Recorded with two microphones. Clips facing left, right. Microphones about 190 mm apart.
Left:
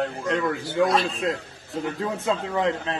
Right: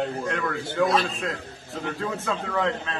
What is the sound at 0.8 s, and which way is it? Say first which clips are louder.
Speech: even; centre (ahead or behind).